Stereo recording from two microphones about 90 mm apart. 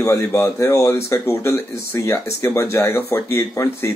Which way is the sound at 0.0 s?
30° left (ahead or behind).